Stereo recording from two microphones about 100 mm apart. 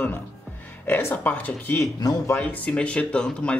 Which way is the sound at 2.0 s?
40° left (ahead or behind).